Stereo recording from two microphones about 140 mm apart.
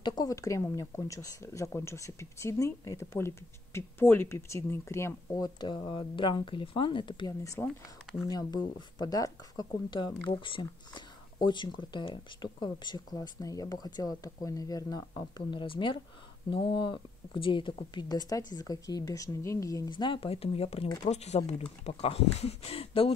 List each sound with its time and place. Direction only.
0.0 s speech: 30° left (ahead or behind)
19.9 s speech: 35° left (ahead or behind)